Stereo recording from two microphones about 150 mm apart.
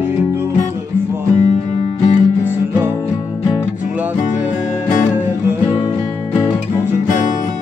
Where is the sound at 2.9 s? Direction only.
20° left (ahead or behind).